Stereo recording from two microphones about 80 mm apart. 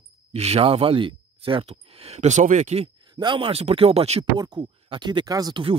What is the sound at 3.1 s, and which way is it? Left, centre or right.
Speech, right.